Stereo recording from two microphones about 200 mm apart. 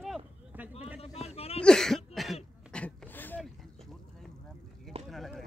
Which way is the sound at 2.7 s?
5° left (ahead or behind).